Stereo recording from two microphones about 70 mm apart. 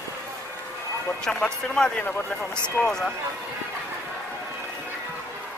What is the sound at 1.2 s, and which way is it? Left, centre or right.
Speech, centre.